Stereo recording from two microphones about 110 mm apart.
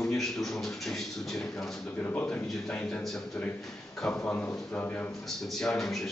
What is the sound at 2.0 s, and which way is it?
Speech, 20° left (ahead or behind).